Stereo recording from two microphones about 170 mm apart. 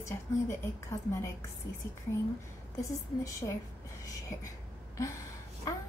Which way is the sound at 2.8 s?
15° left (ahead or behind).